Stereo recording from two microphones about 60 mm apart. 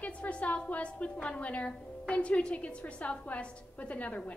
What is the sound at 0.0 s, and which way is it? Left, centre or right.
A woman's voice, left.